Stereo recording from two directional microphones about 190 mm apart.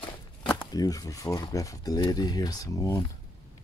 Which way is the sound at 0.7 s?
20° left (ahead or behind).